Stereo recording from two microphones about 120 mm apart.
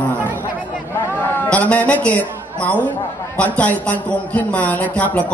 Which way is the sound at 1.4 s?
10° left (ahead or behind).